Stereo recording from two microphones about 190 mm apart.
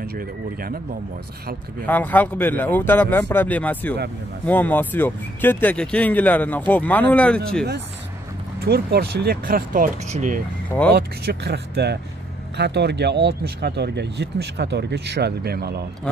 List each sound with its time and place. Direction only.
0.0 s speech: 50° right (ahead or behind)
1.9 s speech: 10° left (ahead or behind)
8.5 s speech: 55° right (ahead or behind)
10.9 s speech: 55° right (ahead or behind)